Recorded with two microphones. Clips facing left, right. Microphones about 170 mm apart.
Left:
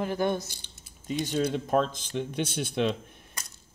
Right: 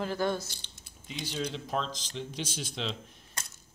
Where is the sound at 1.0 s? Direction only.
50° left (ahead or behind).